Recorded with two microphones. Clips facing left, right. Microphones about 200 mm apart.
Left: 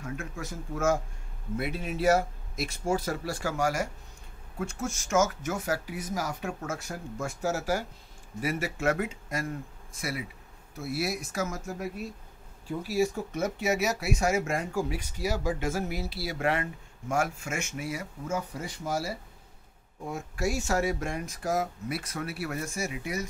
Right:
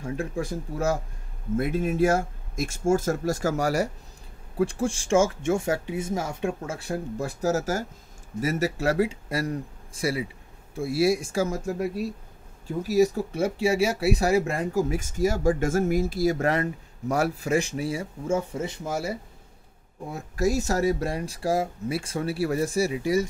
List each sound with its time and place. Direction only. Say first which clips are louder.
0.0 s speech: right 8 dB; 30° right (ahead or behind)
1.6 s speech: right 7 dB; 45° right (ahead or behind); by 11.7 s 30° right (ahead or behind)
12.8 s speech: right 7 dB; 40° right (ahead or behind); by 19.1 s 20° right (ahead or behind)
20.1 s speech: right 5 dB; 35° right (ahead or behind)